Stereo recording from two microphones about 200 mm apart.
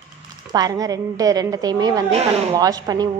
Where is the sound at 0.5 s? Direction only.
20° right (ahead or behind).